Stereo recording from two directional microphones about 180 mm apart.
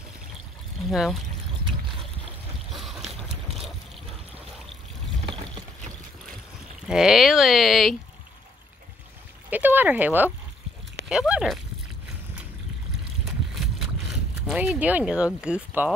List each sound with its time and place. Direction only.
2.7 s boat: centre (ahead or behind)
5.3 s boat: 25° right (ahead or behind)
6.9 s speech: 5° right (ahead or behind)
9.5 s speech: 10° right (ahead or behind)
13.6 s boat: centre (ahead or behind)